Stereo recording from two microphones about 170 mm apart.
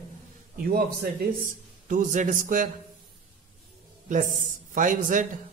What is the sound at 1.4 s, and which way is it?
A man's voice, 50° right (ahead or behind).